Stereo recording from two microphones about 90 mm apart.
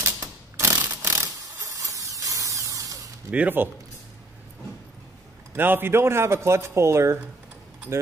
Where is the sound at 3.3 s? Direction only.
20° right (ahead or behind).